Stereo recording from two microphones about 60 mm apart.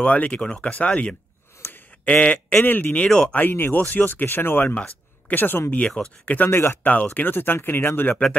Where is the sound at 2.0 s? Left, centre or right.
Left.